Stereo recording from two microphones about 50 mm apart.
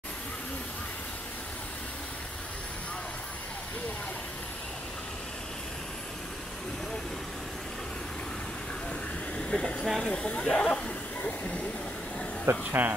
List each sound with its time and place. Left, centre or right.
9.4 s a sound: left
9.8 s speech: centre
11.2 s vehicle: left
12.4 s speech: right